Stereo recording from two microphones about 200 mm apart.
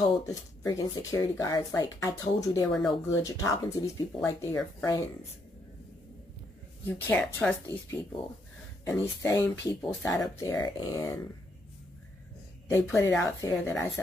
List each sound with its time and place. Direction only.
0.3 s speech: 15° left (ahead or behind)
6.9 s speech: 10° left (ahead or behind)
12.7 s speech: 10° left (ahead or behind)